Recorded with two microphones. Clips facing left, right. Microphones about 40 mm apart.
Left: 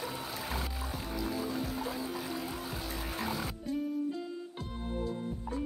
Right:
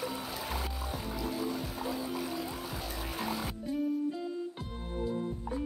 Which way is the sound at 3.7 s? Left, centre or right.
Centre.